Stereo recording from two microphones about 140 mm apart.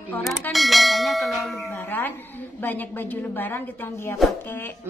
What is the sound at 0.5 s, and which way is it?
Church bell, centre (ahead or behind).